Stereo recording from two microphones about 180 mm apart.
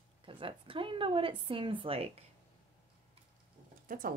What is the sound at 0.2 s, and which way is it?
Speech, 30° right (ahead or behind).